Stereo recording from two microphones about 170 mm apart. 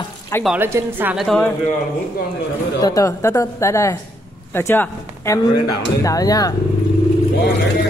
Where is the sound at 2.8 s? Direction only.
20° left (ahead or behind).